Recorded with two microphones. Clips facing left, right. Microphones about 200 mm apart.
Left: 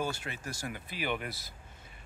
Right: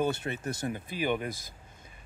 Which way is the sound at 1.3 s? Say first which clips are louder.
Right 5 dB; 50° right (ahead or behind).